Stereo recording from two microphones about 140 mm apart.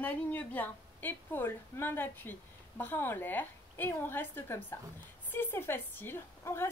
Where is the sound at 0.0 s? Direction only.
10° left (ahead or behind).